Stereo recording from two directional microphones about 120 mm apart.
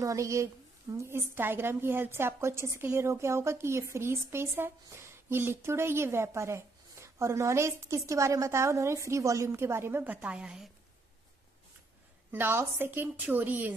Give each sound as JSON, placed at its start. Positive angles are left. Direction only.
{"t": 0.0, "sound": "a woman's voice", "side_deg": -25}
{"t": 12.3, "sound": "a woman's voice", "side_deg": -20}